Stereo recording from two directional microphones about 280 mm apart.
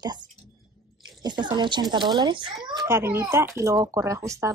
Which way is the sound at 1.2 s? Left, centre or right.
Centre.